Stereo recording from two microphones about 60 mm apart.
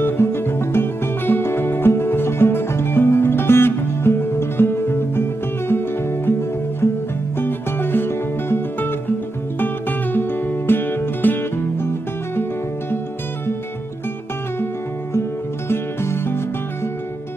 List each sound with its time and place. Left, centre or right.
0.0 s music: left
7.3 s music: left
15.7 s music: left